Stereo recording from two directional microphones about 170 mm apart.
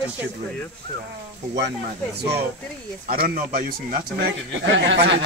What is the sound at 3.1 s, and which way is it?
A man's voice, 60° right (ahead or behind).